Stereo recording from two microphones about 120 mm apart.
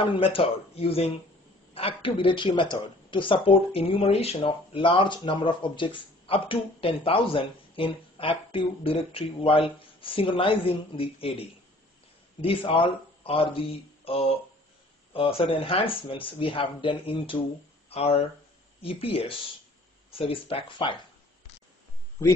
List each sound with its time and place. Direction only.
0.0 s speech: 50° left (ahead or behind)